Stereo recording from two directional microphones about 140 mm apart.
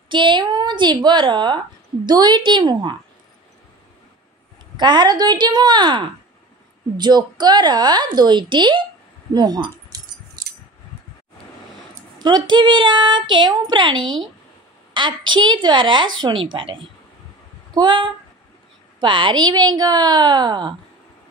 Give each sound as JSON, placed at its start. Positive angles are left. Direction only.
{"t": 0.1, "sound": "speech", "side_deg": -35}
{"t": 4.7, "sound": "speech", "side_deg": -30}
{"t": 12.2, "sound": "speech", "side_deg": -30}